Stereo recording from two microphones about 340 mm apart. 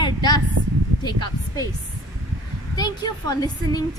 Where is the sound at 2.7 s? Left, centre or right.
Centre.